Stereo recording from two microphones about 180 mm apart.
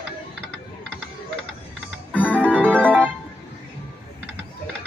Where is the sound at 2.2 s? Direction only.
10° left (ahead or behind).